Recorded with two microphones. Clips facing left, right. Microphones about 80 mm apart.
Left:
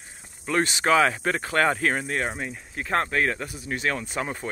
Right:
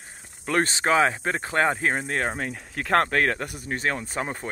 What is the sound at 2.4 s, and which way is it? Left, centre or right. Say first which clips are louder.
Speech: right 2 dB; right.